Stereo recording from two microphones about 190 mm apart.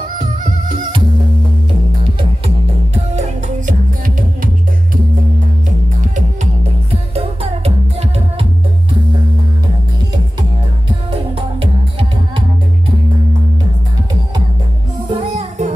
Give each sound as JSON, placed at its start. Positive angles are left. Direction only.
{"t": 2.4, "sound": "music", "side_deg": -35}
{"t": 6.9, "sound": "music", "side_deg": -30}
{"t": 11.3, "sound": "music", "side_deg": -30}
{"t": 15.0, "sound": "music", "side_deg": -30}